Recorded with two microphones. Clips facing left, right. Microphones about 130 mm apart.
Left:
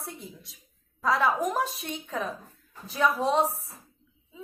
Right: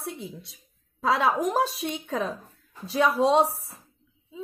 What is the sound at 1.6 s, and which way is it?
Speech, 90° right.